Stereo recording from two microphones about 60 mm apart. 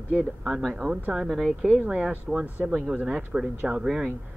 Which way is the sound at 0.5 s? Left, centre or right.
Centre.